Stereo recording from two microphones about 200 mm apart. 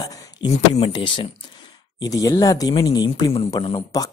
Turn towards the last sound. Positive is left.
turn(degrees=20)  # may be behind; listen again after turning